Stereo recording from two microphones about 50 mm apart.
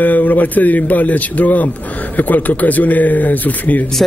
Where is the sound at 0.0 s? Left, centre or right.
Left.